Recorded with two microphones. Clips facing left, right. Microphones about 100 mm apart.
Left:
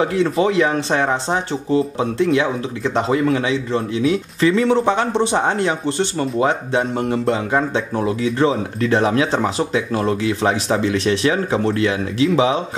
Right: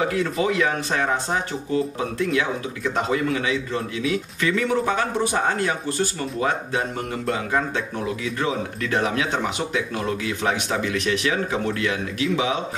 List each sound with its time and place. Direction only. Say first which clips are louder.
0.1 s speech: left 6 dB; 25° left (ahead or behind)